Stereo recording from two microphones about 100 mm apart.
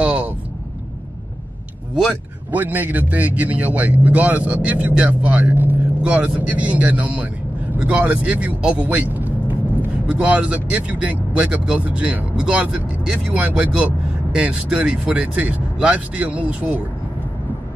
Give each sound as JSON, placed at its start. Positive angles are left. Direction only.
{"t": 0.0, "sound": "vehicle", "side_deg": -10}
{"t": 2.5, "sound": "a man's voice", "side_deg": -15}